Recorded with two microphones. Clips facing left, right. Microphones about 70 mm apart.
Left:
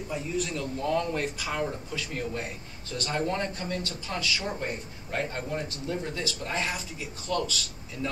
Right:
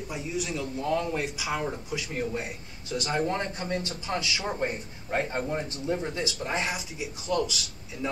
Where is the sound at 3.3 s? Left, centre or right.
Right.